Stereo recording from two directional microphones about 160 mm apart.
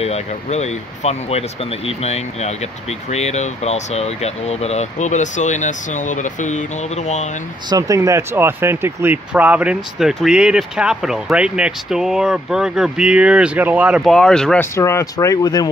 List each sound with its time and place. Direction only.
0.0 s speech: 45° left (ahead or behind)
7.7 s speech: 20° right (ahead or behind); by 14.7 s 5° left (ahead or behind)
14.8 s speech: 20° left (ahead or behind)